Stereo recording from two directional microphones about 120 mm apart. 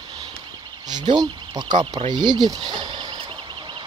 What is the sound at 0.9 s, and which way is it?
Speech, 35° right (ahead or behind).